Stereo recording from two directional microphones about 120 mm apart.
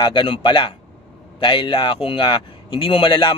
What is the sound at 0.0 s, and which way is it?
A man's voice, 40° left (ahead or behind).